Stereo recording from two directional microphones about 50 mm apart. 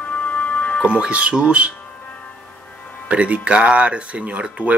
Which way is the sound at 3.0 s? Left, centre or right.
Right.